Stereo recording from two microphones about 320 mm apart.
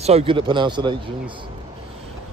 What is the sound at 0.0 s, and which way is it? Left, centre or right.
Speech, centre.